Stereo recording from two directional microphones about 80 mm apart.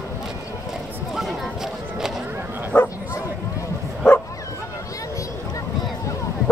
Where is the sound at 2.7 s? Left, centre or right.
Left.